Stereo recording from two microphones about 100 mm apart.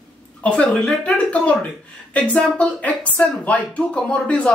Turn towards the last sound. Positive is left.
turn(degrees=15)  # may be behind; listen again after turning